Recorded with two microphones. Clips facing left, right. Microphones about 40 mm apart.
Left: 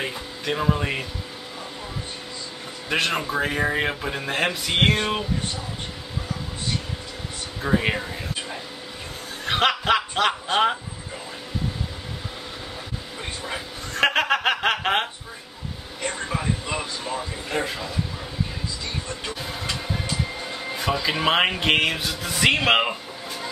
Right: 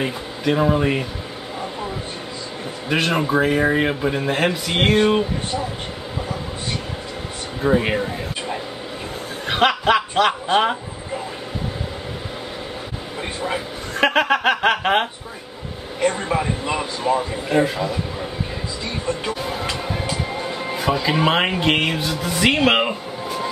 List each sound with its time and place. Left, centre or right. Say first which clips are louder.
0.0 s a man's voice: right 6 dB; centre
2.9 s a man's voice: right 4 dB; centre
7.6 s a man's voice: right 4 dB; centre
9.5 s speech: right 3 dB; centre
13.9 s a man's voice: right 3 dB; centre
16.0 s a man's voice: right 8 dB; centre
17.5 s a man's voice: right 8 dB; centre
19.0 s a man's voice: right 7 dB; centre
19.7 s music: right 4 dB; centre